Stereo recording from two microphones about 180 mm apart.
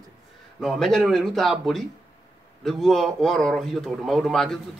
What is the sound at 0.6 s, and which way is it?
A man's voice, centre (ahead or behind).